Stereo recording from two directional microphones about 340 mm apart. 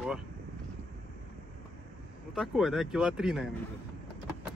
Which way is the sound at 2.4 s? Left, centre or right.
Centre.